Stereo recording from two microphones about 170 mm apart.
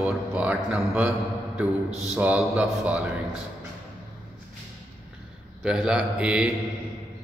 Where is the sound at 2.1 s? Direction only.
10° right (ahead or behind).